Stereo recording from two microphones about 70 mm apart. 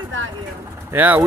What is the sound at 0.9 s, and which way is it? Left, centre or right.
Speech, right.